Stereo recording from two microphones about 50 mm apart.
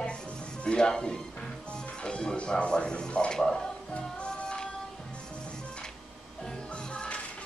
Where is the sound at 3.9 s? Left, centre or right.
Centre.